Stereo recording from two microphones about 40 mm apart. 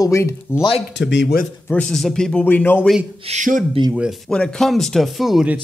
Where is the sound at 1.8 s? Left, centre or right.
Centre.